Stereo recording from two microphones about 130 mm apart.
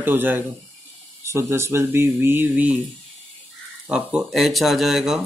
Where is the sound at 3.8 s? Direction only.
5° right (ahead or behind).